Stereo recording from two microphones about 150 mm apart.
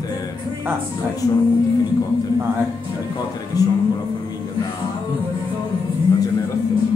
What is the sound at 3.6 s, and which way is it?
Speech, 25° left (ahead or behind).